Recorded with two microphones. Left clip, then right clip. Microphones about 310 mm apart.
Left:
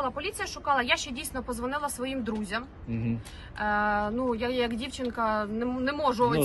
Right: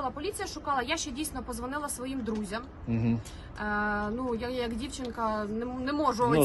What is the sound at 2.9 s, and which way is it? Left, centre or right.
Speech, right.